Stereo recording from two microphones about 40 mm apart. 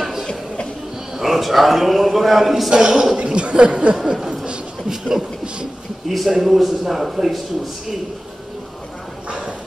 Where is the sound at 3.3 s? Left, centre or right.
Right.